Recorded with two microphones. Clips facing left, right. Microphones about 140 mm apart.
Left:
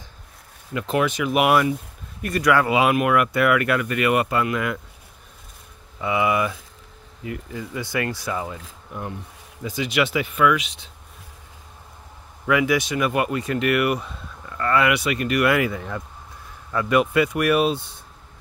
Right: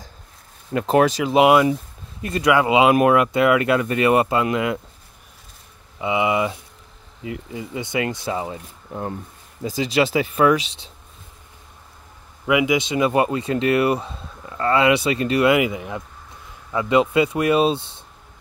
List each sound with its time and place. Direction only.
0.7 s speech: 40° right (ahead or behind); by 4.7 s 20° right (ahead or behind)
5.9 s speech: 20° right (ahead or behind)
12.4 s speech: 15° right (ahead or behind)